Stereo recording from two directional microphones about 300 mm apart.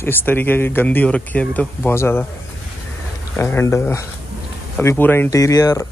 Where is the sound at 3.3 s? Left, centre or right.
Centre.